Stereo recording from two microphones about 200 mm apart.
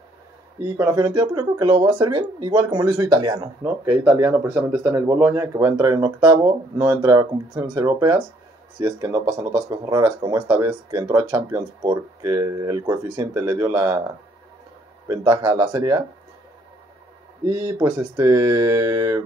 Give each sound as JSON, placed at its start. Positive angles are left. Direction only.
{"t": 0.7, "sound": "speech", "side_deg": -15}
{"t": 15.0, "sound": "speech", "side_deg": -20}
{"t": 17.5, "sound": "speech", "side_deg": -20}